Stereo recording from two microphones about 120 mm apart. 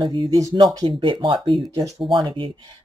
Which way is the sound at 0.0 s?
40° right (ahead or behind).